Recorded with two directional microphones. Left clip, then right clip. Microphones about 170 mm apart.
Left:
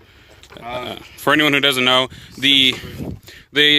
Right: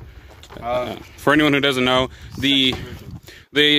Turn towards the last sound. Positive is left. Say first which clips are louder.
# left 2 dB
turn(degrees=-5)  # may be behind; listen again after turning